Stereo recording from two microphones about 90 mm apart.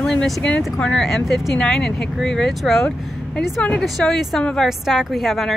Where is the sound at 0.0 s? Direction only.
5° left (ahead or behind).